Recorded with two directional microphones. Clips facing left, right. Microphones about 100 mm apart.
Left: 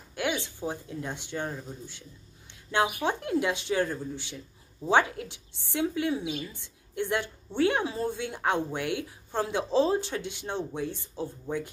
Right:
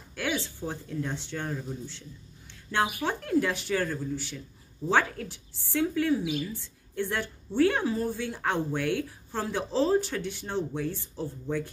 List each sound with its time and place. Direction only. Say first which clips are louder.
0.1 s a woman's voice: left 1 dB; 20° left (ahead or behind)